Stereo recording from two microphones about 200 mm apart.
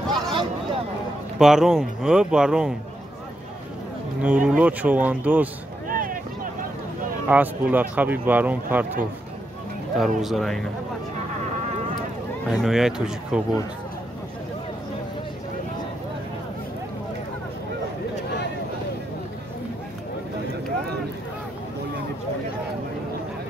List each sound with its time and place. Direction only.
0.1 s a sound: 25° right (ahead or behind)
1.4 s speech: centre (ahead or behind)
4.2 s speech: 5° right (ahead or behind)
5.9 s a sound: 45° right (ahead or behind)
7.2 s speech: 10° right (ahead or behind)
12.6 s speech: centre (ahead or behind)